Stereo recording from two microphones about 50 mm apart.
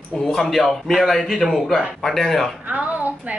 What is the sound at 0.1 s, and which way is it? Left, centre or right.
A man's voice, centre.